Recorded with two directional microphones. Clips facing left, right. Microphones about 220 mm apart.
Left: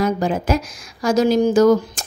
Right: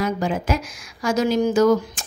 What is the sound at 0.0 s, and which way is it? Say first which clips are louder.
Speech: left 4 dB; 40° left (ahead or behind).